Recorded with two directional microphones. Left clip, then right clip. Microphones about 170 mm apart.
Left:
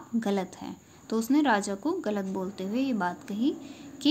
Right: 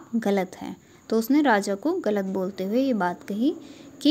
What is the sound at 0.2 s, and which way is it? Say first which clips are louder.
A woman's voice: right 6 dB; 35° right (ahead or behind).